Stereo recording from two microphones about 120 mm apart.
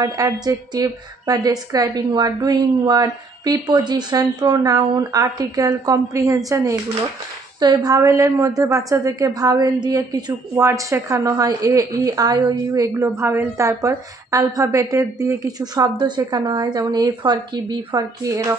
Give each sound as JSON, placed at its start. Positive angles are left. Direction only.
{"t": 0.0, "sound": "a woman's voice", "side_deg": -30}